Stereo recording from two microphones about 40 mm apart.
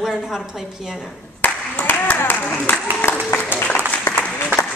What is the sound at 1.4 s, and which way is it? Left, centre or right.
Clapping, left.